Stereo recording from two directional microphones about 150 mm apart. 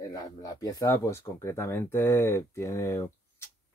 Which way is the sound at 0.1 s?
25° left (ahead or behind).